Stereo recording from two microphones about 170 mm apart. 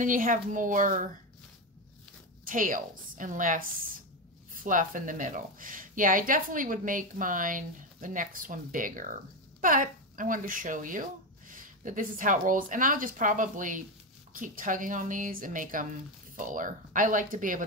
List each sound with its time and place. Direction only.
0.0 s a woman's voice: 50° right (ahead or behind)
2.4 s a woman's voice: 55° right (ahead or behind)